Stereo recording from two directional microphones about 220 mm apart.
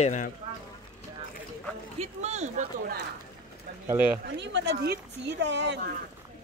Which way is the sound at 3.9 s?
5° right (ahead or behind).